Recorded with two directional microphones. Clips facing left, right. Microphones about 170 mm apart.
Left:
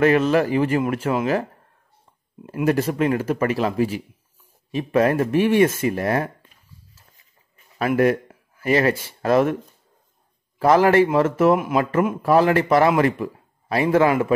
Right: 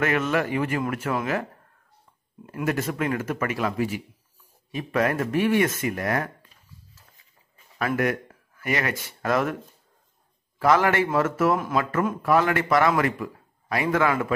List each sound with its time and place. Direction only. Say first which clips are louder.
0.0 s a man's voice: left 7 dB; 30° left (ahead or behind)
2.4 s a man's voice: left 6 dB; 25° left (ahead or behind)
7.8 s speech: left 6 dB; 25° left (ahead or behind)
10.6 s a man's voice: left 5 dB; 30° left (ahead or behind)
12.2 s a man's voice: left 5 dB; 30° left (ahead or behind)